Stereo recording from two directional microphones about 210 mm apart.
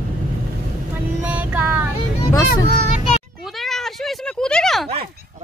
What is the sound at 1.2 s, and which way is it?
Vehicle, 10° right (ahead or behind).